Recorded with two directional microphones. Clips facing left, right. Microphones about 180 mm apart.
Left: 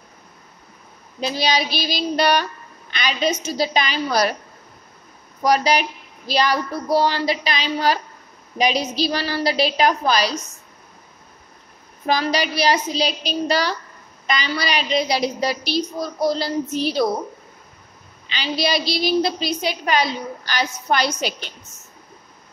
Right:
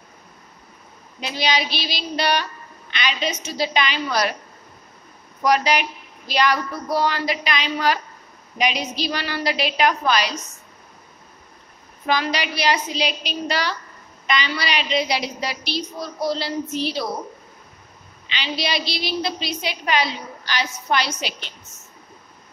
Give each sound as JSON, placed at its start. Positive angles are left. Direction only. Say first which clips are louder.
{"t": 1.2, "sound": "a woman's voice", "louder": "left 2 dB", "side_deg": 35}
{"t": 5.4, "sound": "a woman's voice", "louder": "left 1 dB", "side_deg": 35}
{"t": 12.1, "sound": "a woman's voice", "louder": "left 2 dB", "side_deg": 40}
{"t": 18.2, "sound": "a woman's voice", "louder": "left 4 dB", "side_deg": 40}